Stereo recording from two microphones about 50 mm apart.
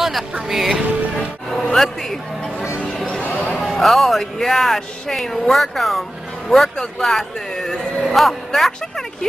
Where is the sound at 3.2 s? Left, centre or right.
Left.